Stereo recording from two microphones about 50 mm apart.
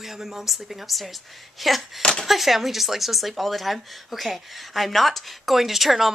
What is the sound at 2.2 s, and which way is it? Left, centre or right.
Speech, centre.